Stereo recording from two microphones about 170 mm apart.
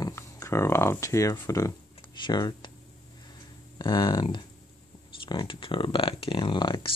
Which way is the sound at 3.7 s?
25° left (ahead or behind).